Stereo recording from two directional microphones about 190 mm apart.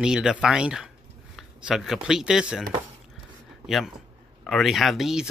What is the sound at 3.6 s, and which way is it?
Speech, centre (ahead or behind).